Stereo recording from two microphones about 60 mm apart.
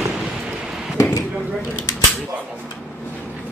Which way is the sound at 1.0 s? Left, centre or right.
Left.